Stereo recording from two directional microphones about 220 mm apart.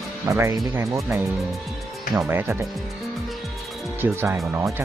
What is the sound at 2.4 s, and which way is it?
Speech, 10° right (ahead or behind).